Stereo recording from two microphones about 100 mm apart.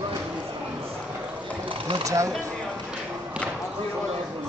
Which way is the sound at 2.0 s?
35° right (ahead or behind).